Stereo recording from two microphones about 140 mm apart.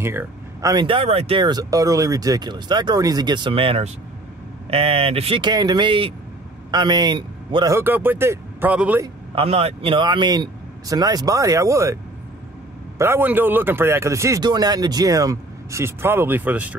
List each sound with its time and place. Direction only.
0.0 s speech: 20° right (ahead or behind)
0.8 s a man's voice: 40° right (ahead or behind)
7.7 s speech: 15° right (ahead or behind)
9.3 s speech: 45° right (ahead or behind); by 16.7 s 10° right (ahead or behind)